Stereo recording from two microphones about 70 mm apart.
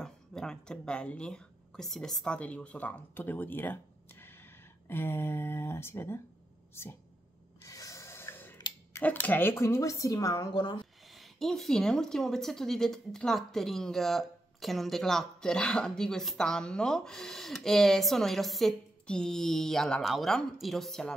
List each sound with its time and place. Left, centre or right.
0.0 s a sound: centre
1.9 s speech: centre
2.3 s speech: centre; by 7.0 s left
7.6 s a sound: left
9.0 s speech: left
11.1 s speech: centre